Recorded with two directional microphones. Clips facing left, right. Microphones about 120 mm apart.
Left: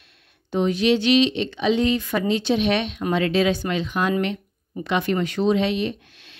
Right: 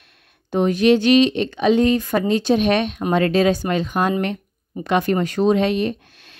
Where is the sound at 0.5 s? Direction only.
50° right (ahead or behind).